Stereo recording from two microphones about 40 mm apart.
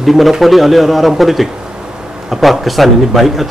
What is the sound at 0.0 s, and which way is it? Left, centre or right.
A man's voice, centre.